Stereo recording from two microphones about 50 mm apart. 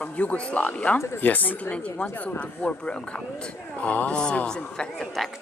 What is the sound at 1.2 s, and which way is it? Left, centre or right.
A woman's voice, left.